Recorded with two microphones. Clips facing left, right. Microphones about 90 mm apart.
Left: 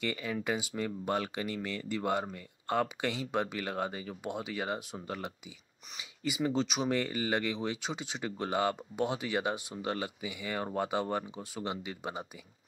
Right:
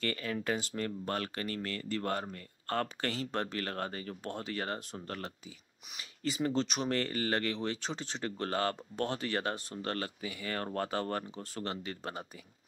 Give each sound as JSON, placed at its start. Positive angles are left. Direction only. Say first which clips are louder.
{"t": 0.0, "sound": "speech", "louder": "left 1 dB", "side_deg": 15}